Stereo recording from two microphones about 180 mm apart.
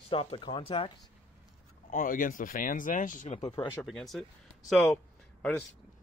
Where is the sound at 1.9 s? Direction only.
50° left (ahead or behind).